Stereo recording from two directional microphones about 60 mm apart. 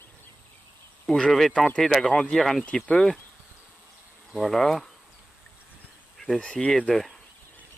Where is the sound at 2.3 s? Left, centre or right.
Centre.